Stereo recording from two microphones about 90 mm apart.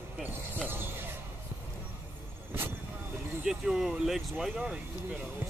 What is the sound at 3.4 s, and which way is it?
Speech, 5° right (ahead or behind).